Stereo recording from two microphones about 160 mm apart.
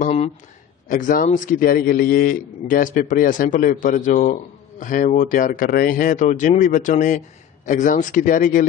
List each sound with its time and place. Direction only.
0.0 s a sound: 40° left (ahead or behind)
0.8 s a man's voice: 55° left (ahead or behind)
6.2 s speech: 45° left (ahead or behind)